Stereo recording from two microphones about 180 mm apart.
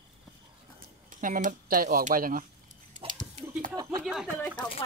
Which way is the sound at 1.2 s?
45° right (ahead or behind).